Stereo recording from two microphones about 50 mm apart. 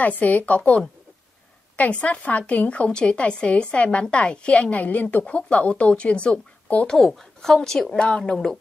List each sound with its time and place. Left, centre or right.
0.2 s a woman's voice: left
1.8 s a woman's voice: left
7.1 s a woman's voice: centre